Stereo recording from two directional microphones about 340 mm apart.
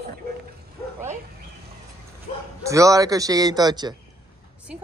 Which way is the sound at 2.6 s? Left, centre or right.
Centre.